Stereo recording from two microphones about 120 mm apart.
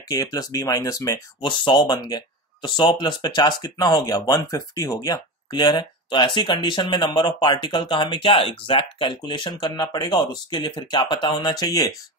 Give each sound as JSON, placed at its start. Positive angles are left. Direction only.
{"t": 0.1, "sound": "speech", "side_deg": 30}
{"t": 1.4, "sound": "speech", "side_deg": 40}